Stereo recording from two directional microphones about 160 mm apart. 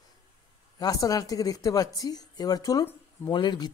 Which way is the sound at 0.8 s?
20° left (ahead or behind).